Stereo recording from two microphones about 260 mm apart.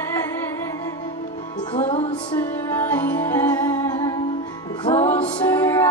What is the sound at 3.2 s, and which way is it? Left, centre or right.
Music, centre.